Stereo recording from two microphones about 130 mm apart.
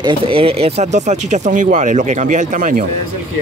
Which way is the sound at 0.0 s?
45° right (ahead or behind).